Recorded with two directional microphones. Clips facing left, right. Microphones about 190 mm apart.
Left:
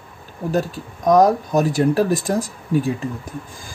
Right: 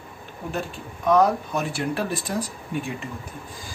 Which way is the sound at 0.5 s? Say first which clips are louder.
Left 9 dB; 40° left (ahead or behind).